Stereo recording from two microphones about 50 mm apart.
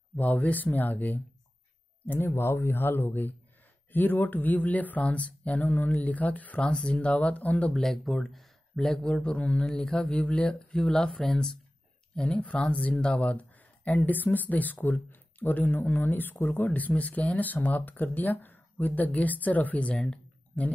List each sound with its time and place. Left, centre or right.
0.1 s speech: left
2.0 s speech: left
6.6 s speech: left
7.7 s speech: centre
12.2 s speech: left